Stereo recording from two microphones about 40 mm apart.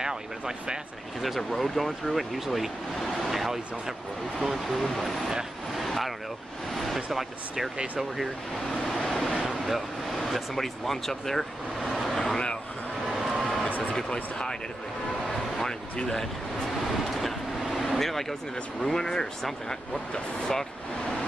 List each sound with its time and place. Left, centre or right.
0.0 s speech: centre
1.2 s speech: centre
5.7 s vehicle: centre
7.1 s speech: centre
7.7 s speech: right
8.6 s speech: centre
9.0 s waves: centre
9.7 s speech: centre
11.8 s vehicle: centre
13.7 s a sound: left
14.1 s speech: left
15.2 s vehicle: centre
16.8 s vehicle: centre
18.9 s speech: centre